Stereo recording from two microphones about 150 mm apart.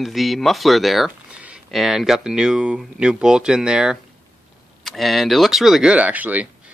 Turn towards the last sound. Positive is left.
turn(degrees=-10)  # may be behind; listen again after turning